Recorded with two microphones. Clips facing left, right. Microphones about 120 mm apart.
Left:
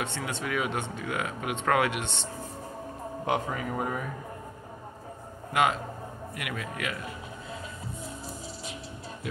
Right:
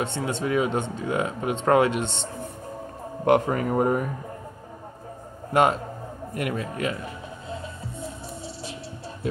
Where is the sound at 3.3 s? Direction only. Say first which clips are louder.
Right 9 dB; 55° right (ahead or behind).